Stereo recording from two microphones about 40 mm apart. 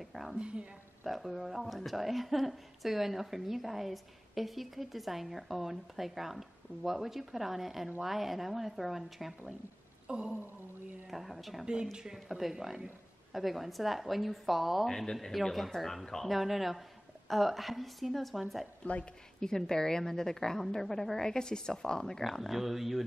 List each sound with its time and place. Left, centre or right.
0.0 s a woman's voice: centre
10.0 s a sound: right
11.1 s speech: centre
11.6 s speech: right
12.3 s speech: centre
14.9 s speech: centre
15.5 s speech: centre
19.4 s speech: centre